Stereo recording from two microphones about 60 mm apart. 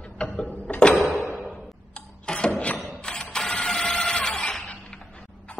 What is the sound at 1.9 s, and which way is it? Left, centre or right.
Tick-tock, centre.